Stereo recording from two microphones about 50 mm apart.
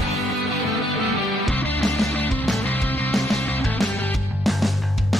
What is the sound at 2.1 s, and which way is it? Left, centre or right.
Music, left.